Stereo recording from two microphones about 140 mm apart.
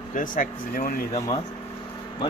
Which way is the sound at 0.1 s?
75° left (ahead or behind).